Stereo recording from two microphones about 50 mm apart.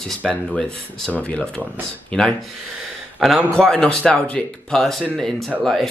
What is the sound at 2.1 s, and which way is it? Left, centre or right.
Speech, centre.